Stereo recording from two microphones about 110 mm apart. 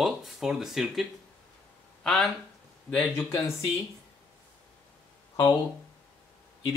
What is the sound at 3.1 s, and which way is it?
Speech, 20° left (ahead or behind).